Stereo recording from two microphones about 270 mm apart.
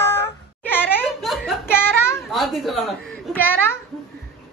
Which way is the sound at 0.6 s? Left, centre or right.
Centre.